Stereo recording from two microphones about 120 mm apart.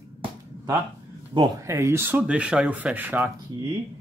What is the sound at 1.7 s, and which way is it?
Speech, 25° right (ahead or behind).